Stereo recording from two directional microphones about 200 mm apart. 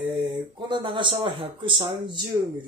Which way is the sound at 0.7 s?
25° right (ahead or behind).